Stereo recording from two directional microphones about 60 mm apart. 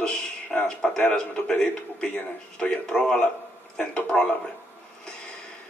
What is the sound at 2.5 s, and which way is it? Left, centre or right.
A man's voice, centre.